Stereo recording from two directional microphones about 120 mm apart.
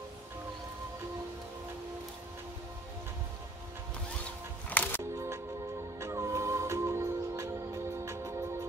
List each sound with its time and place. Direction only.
4.6 s music: 15° left (ahead or behind)
5.1 s music: 25° right (ahead or behind)